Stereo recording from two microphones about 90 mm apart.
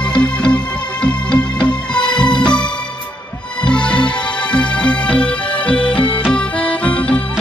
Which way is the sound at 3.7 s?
10° left (ahead or behind).